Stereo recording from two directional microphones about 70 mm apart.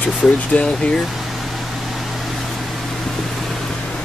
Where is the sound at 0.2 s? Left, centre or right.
Centre.